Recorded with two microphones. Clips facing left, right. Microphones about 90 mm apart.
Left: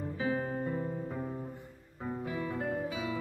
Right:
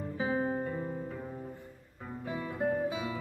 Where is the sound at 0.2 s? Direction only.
20° right (ahead or behind).